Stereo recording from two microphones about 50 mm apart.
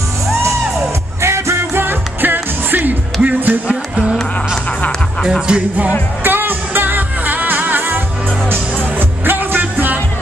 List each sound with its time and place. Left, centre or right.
1.2 s music: right
3.6 s music: centre
6.2 s music: right
9.2 s music: right